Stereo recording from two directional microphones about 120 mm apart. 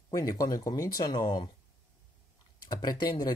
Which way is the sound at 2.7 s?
35° left (ahead or behind).